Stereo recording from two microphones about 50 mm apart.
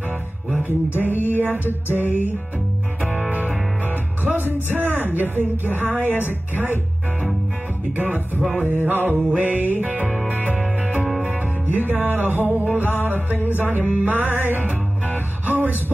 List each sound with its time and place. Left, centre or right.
0.7 s speech: right
2.0 s music: left
3.1 s music: right
4.2 s music: right
4.6 s speech: right
7.9 s speech: right
10.3 s music: right
11.6 s speech: right